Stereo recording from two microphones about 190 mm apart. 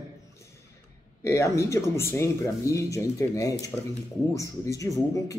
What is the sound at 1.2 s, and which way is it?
Speech, 15° left (ahead or behind).